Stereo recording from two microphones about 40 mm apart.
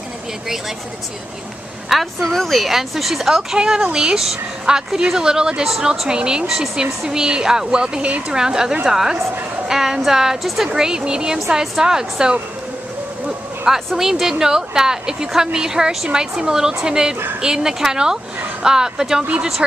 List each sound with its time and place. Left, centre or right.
1.9 s speech: centre
3.5 s a woman's voice: centre
6.4 s a woman's voice: centre
10.7 s a woman's voice: centre
13.9 s a woman's voice: centre